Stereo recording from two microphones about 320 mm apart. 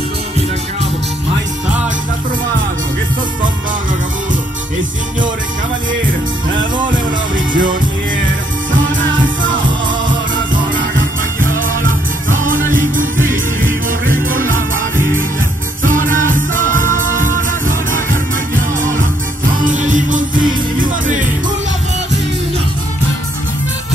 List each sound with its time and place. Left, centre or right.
7.3 s music: right
9.4 s music: right
11.3 s music: right
15.8 s music: right
19.6 s music: right